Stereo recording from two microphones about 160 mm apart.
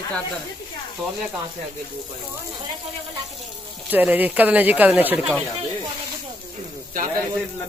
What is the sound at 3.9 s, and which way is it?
Speech, 10° right (ahead or behind).